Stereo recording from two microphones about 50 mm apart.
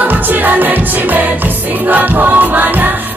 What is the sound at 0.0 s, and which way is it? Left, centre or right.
Music, right.